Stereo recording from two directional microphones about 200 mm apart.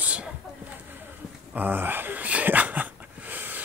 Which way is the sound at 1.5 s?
10° right (ahead or behind).